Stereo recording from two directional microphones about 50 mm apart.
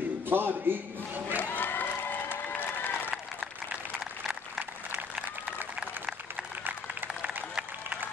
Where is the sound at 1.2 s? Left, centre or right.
Left.